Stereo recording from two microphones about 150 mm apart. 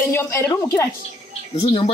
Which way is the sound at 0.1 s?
20° left (ahead or behind).